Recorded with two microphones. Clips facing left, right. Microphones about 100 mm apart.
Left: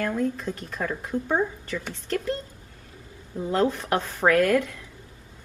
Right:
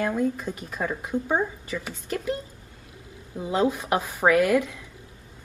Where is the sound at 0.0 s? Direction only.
10° right (ahead or behind).